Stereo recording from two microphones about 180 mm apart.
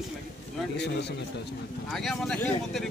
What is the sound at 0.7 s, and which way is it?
Speech, 65° left (ahead or behind).